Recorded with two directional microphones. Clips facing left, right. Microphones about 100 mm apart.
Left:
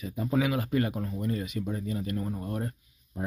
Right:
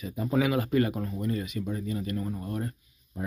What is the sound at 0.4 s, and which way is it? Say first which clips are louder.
Speech: right 3 dB; centre (ahead or behind).